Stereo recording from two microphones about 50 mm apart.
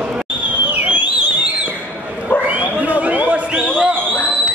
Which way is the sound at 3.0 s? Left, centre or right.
Right.